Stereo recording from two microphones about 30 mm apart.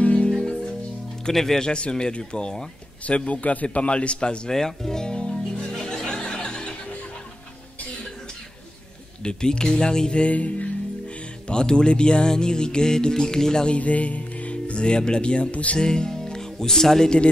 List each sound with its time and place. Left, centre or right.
0.0 s music: left
0.4 s music: left
1.3 s speech: centre
1.7 s speech: left
3.1 s a man's voice: left
4.5 s speech: centre
5.1 s music: left
5.7 s music: centre
9.2 s speech: left
10.3 s a man's voice: left
11.4 s speech: left
13.7 s speech: left
15.5 s a man's voice: left
15.8 s speech: left